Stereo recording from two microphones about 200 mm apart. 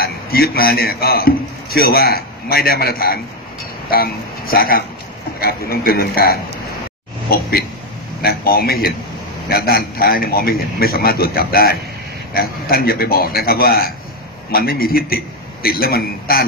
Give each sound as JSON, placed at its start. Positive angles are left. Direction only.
{"t": 0.0, "sound": "a man's voice", "side_deg": 50}